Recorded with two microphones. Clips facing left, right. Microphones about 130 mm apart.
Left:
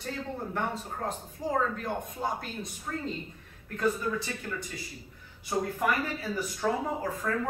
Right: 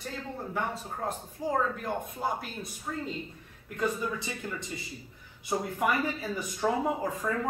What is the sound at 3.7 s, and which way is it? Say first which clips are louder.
Speech: left 2 dB; 20° right (ahead or behind).